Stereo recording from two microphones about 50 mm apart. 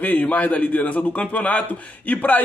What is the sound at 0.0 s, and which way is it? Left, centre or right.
A man's voice, left.